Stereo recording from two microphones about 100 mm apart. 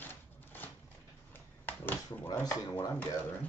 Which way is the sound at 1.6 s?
20° left (ahead or behind).